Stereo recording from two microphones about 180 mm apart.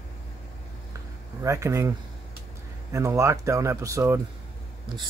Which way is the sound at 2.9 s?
15° right (ahead or behind).